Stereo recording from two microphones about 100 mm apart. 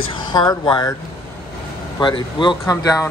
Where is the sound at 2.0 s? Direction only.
55° left (ahead or behind).